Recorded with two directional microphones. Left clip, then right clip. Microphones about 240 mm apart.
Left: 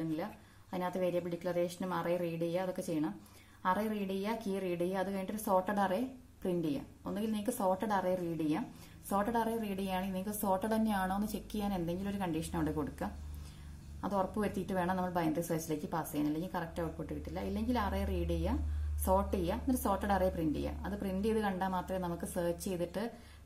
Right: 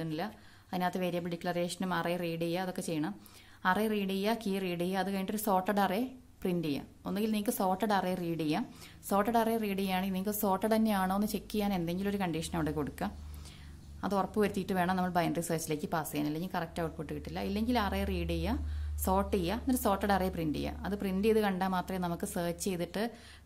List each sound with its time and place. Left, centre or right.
0.1 s a woman's voice: right
3.9 s a woman's voice: right